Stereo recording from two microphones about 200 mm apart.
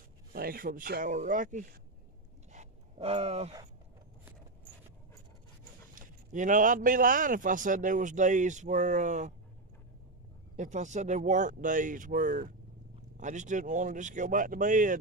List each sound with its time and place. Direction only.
0.3 s speech: 45° right (ahead or behind)
2.5 s gasp: 30° right (ahead or behind)
5.9 s a man's voice: 40° right (ahead or behind)
10.5 s a man's voice: 35° right (ahead or behind)